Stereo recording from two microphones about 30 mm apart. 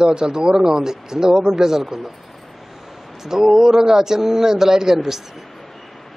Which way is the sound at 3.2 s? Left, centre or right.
Centre.